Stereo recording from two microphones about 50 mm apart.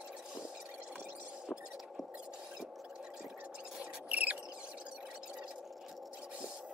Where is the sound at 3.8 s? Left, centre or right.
Right.